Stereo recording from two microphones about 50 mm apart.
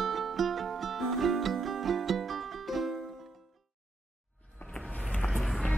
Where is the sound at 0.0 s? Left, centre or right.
Centre.